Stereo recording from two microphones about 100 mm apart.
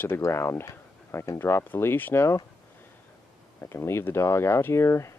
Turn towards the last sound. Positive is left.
turn(degrees=30)  # may be behind; listen again after turning